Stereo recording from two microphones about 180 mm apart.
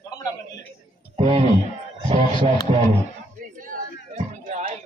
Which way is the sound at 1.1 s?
30° right (ahead or behind).